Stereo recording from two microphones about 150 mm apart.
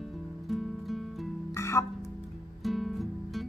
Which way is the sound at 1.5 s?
20° left (ahead or behind).